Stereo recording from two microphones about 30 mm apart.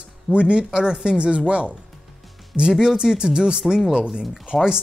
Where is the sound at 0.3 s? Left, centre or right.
Right.